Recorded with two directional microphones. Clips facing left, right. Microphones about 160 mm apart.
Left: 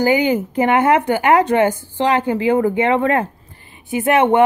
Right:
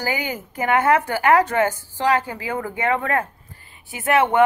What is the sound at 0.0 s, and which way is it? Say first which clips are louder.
Speech: left 11 dB; 20° left (ahead or behind).